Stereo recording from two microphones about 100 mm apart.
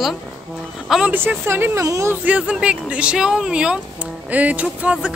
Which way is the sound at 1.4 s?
25° right (ahead or behind).